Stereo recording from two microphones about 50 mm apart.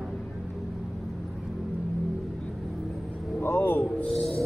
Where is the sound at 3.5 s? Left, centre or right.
Left.